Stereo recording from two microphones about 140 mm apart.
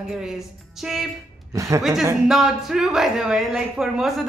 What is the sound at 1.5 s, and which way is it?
Speech, 25° right (ahead or behind).